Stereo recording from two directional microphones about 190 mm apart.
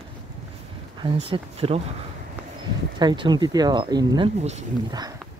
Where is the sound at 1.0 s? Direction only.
30° right (ahead or behind).